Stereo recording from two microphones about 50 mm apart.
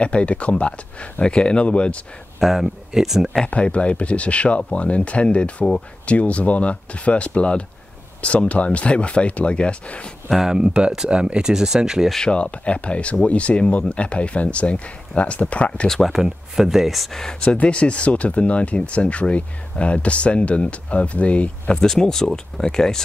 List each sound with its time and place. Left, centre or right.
0.0 s speech: left
2.4 s speech: centre
3.4 s speech: left
10.4 s speech: centre
12.3 s speech: left
16.1 s speech: centre
17.2 s speech: centre
22.0 s speech: centre